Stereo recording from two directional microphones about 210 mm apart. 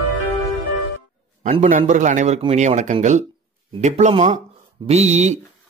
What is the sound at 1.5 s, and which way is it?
Speech, 30° right (ahead or behind).